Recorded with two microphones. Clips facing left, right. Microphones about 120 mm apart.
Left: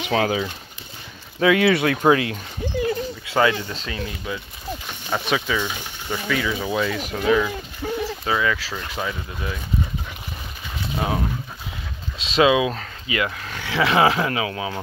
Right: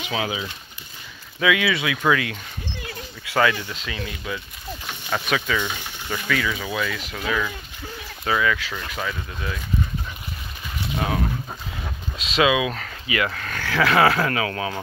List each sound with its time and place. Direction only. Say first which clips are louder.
0.1 s speech: left 6 dB; 45° left (ahead or behind)
2.0 s dog: left 4 dB; 30° left (ahead or behind)
3.7 s speech: left 2 dB; 35° left (ahead or behind)
5.1 s speech: left 1 dB; 15° left (ahead or behind)
7.0 s speech: left 6 dB; 40° left (ahead or behind)
7.2 s speech: left 6 dB; 25° left (ahead or behind)
11.0 s speech: left 1 dB; 20° left (ahead or behind)
13.3 s speech: right 2 dB; 15° left (ahead or behind)
13.7 s speech: even; 25° left (ahead or behind)